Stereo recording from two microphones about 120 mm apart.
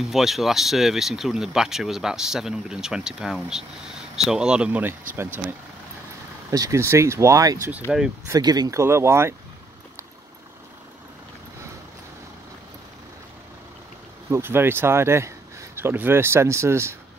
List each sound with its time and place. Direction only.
0.0 s speech: centre (ahead or behind); by 7.5 s 25° right (ahead or behind)
7.9 s speech: 5° right (ahead or behind)
8.3 s speech: 35° right (ahead or behind)
14.3 s speech: 20° right (ahead or behind)